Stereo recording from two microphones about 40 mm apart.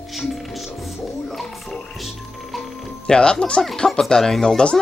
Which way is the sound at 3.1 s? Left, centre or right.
Left.